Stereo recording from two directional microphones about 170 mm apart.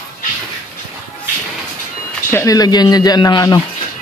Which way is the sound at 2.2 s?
20° left (ahead or behind).